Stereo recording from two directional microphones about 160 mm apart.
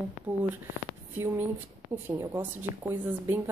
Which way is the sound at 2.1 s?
15° right (ahead or behind).